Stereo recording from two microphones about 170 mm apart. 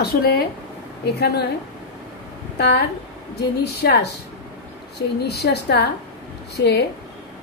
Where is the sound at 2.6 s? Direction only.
75° left (ahead or behind).